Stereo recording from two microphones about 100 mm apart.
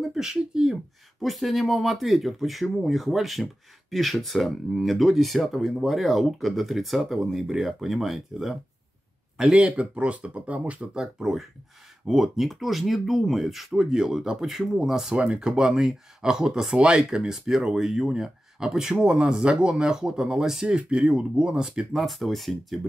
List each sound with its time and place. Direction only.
0.1 s speech: 5° right (ahead or behind)